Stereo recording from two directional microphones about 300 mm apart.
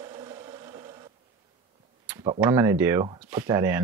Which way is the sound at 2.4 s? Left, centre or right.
Centre.